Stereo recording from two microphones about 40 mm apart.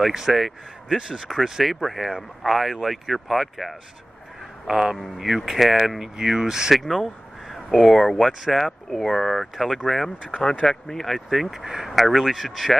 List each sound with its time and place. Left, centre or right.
0.0 s speech: centre
0.9 s speech: right
1.2 s speech: centre
4.6 s speech: centre
4.9 s speech: centre
5.2 s speech: centre
6.8 s speech: centre
10.2 s speech: left
11.5 s speech: centre